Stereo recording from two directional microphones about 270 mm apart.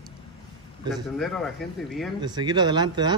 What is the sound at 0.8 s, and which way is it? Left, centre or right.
A man's voice, centre.